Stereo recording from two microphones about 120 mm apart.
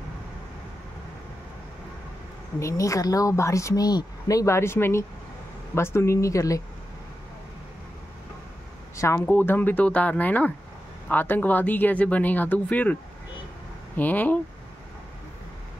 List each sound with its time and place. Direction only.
2.6 s speech: 25° left (ahead or behind)
8.9 s speech: 25° left (ahead or behind)
13.9 s speech: 15° left (ahead or behind)